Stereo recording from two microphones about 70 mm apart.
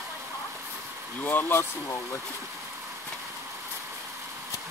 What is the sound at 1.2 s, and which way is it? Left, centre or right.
Speech, left.